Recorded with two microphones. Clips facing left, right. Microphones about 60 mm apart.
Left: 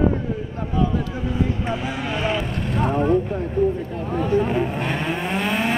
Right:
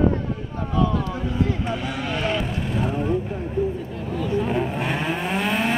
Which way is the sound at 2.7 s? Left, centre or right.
Left.